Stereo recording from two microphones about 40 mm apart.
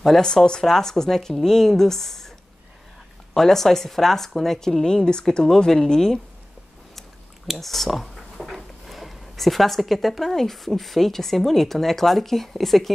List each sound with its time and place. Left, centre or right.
0.1 s speech: centre
3.3 s speech: centre
7.4 s a sound: centre
10.3 s speech: centre